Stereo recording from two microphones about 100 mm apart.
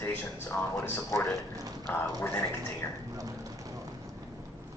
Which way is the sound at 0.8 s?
25° left (ahead or behind).